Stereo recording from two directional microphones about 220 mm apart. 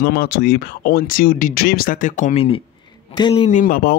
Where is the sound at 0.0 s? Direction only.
45° left (ahead or behind); by 3.4 s 20° left (ahead or behind).